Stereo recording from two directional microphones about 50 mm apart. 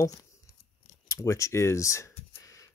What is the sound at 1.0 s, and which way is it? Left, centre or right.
Speech, left.